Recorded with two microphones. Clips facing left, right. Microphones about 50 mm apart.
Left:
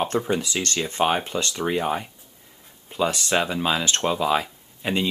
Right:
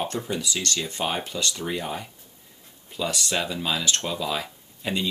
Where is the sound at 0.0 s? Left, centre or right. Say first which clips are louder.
Left 5 dB; left.